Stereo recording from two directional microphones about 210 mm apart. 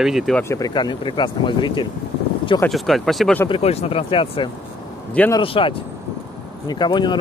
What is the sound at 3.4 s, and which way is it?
Speech, 25° left (ahead or behind).